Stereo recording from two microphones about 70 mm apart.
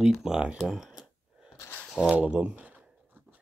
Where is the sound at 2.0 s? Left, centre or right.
Centre.